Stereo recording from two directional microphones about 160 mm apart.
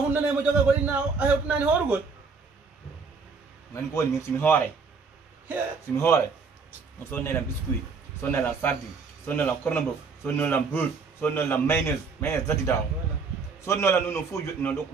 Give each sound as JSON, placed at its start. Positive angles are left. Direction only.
{"t": 0.1, "sound": "a man's voice", "side_deg": -10}
{"t": 3.7, "sound": "speech", "side_deg": 15}
{"t": 5.9, "sound": "speech", "side_deg": 15}